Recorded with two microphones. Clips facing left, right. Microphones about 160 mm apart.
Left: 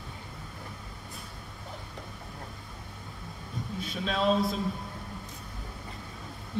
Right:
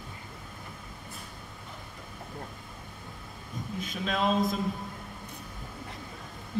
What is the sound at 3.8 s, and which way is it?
Speech, 35° left (ahead or behind).